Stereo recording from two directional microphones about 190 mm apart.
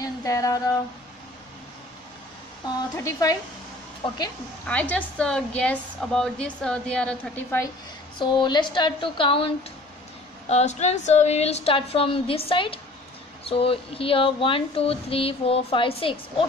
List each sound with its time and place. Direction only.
0.0 s a sound: 15° left (ahead or behind)
3.0 s speech: 15° left (ahead or behind)
4.6 s a woman's voice: 5° left (ahead or behind)
8.2 s speech: 25° left (ahead or behind)
10.5 s speech: 35° left (ahead or behind)